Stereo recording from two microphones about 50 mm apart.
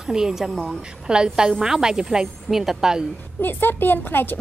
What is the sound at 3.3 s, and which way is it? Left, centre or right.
Speech, left.